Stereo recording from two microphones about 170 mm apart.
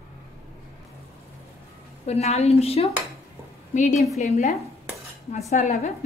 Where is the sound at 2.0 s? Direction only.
40° left (ahead or behind).